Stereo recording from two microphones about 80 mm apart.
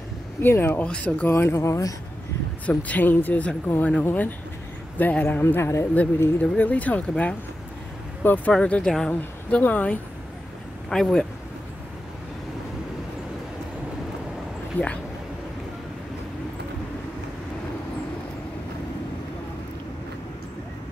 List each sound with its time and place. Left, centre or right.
0.4 s speech: left
0.8 s speech: centre
1.3 s speech: left
2.6 s speech: centre
5.4 s speech: left
6.4 s speech: centre
8.5 s speech: centre
9.6 s speech: centre
10.9 s speech: centre
14.8 s speech: left